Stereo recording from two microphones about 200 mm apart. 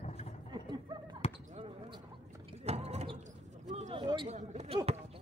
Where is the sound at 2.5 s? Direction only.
30° right (ahead or behind).